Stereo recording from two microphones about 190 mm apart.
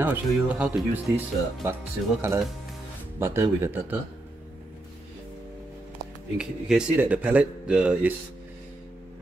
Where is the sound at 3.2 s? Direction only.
15° right (ahead or behind).